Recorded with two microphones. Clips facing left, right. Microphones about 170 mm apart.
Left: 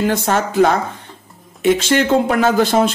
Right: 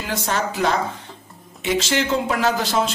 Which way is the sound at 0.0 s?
55° left (ahead or behind).